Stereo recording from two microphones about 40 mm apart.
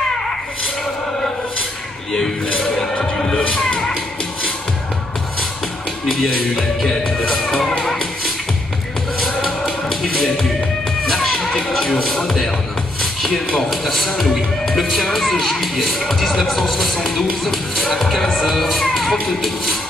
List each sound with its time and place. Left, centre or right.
6.0 s speech: centre
7.8 s music: centre
10.0 s music: centre
13.7 s speech: centre